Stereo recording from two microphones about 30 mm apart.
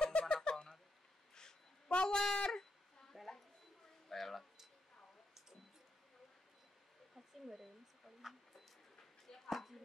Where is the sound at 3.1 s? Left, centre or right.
Centre.